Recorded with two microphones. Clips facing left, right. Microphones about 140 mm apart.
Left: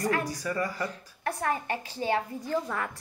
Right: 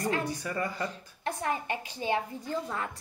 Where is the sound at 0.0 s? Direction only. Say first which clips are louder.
Left 2 dB; 25° right (ahead or behind).